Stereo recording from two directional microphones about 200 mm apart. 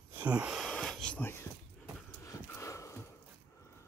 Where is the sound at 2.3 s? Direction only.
15° left (ahead or behind).